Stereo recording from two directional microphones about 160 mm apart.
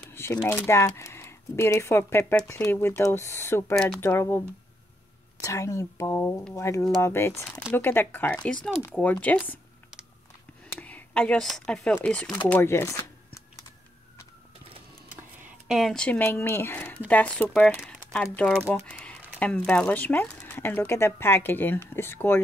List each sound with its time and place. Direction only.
0.1 s speech: 15° left (ahead or behind)
3.7 s speech: centre (ahead or behind)
4.0 s speech: 15° left (ahead or behind)
5.4 s speech: 20° left (ahead or behind)
10.8 s speech: 10° left (ahead or behind)
12.4 s typing: 15° left (ahead or behind)
15.7 s speech: centre (ahead or behind)